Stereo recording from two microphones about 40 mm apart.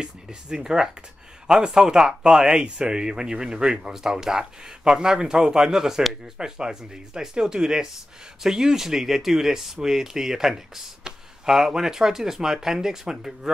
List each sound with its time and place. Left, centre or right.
0.0 s speech: centre